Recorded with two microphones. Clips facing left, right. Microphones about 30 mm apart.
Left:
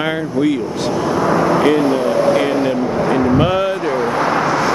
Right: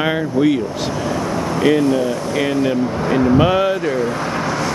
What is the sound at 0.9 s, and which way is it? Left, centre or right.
Speech, centre.